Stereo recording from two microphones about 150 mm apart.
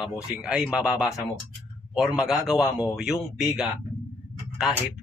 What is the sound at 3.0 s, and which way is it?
Speech, 5° right (ahead or behind).